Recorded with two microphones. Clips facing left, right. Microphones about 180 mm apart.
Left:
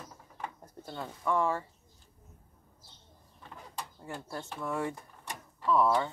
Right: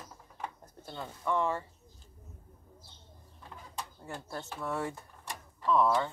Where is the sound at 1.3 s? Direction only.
20° right (ahead or behind).